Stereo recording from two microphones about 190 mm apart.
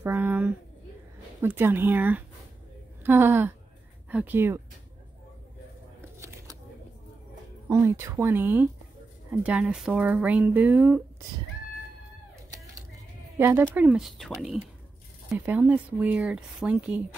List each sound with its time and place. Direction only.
0.0 s a woman's voice: 10° right (ahead or behind)
7.6 s speech: 15° right (ahead or behind)
12.4 s a sound: 15° right (ahead or behind)
13.4 s speech: 10° right (ahead or behind)